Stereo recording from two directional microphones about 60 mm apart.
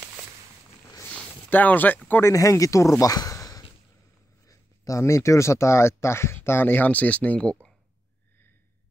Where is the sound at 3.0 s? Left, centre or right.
Left.